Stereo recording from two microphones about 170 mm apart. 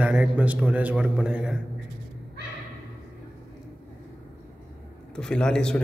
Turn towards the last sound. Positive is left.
turn(degrees=5)  # may be behind; listen again after turning